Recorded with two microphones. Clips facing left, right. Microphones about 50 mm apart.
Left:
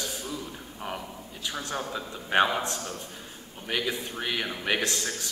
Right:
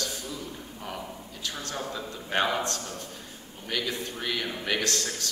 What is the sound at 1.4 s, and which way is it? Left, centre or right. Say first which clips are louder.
A man's voice: left 2 dB; centre.